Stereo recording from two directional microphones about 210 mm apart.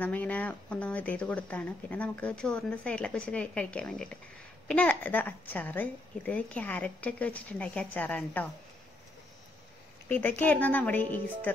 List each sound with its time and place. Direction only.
0.0 s speech: 5° left (ahead or behind)
10.0 s speech: 10° left (ahead or behind)